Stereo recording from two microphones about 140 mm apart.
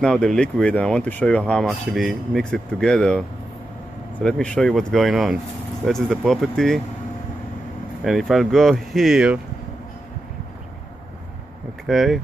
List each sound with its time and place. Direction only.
0.0 s speech: 5° left (ahead or behind)
8.0 s speech: centre (ahead or behind)
11.8 s speech: centre (ahead or behind)